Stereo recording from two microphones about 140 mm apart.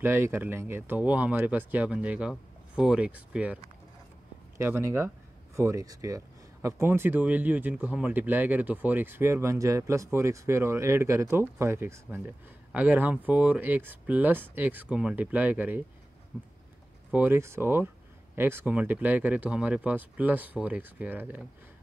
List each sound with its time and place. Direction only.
0.0 s speech: 15° right (ahead or behind)
4.6 s speech: 20° right (ahead or behind)
17.1 s speech: 15° right (ahead or behind)